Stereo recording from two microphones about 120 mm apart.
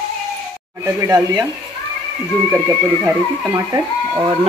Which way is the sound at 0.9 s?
25° right (ahead or behind).